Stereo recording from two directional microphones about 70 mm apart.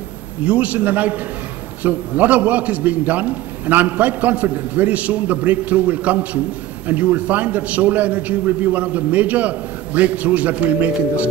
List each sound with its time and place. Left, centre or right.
0.5 s a man's voice: right